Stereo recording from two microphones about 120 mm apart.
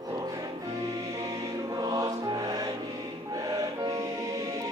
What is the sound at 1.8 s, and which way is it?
Music, 35° right (ahead or behind).